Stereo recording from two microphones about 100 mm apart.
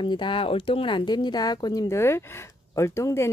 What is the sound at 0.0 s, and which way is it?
Speech, 55° left (ahead or behind).